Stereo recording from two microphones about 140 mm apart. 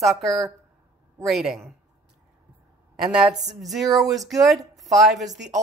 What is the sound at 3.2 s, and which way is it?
A woman's voice, centre (ahead or behind).